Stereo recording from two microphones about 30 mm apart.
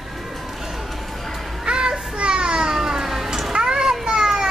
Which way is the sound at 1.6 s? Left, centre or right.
Right.